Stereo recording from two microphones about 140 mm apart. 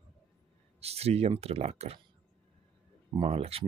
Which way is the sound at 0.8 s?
45° right (ahead or behind).